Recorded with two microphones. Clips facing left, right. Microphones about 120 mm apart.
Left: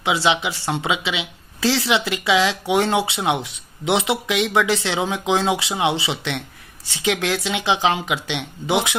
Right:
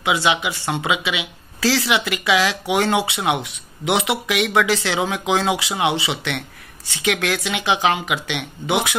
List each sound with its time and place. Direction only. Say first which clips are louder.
0.0 s speech: even; 30° left (ahead or behind)